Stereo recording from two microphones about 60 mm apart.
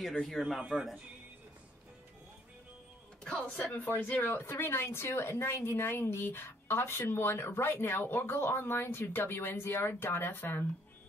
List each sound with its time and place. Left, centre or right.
0.0 s speech: centre
0.6 s speech: centre
3.7 s speech: left
4.2 s a woman's voice: left